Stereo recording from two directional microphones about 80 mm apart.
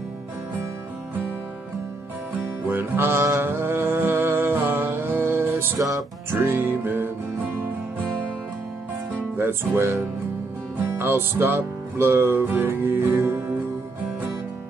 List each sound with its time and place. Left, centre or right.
2.3 s music: right
9.4 s music: right